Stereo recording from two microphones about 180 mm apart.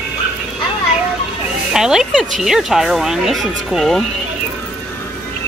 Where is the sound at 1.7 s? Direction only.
5° right (ahead or behind).